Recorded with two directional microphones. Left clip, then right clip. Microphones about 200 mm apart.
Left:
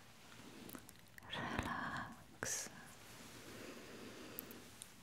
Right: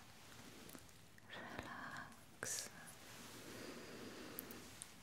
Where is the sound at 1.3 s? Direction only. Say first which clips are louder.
Left 8 dB; 90° left; by 2.0 s 65° left (ahead or behind).